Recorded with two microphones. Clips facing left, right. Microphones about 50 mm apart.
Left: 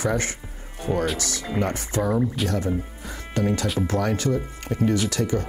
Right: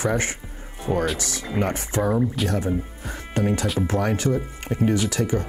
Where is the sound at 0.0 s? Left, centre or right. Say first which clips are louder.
Right 1 dB; right.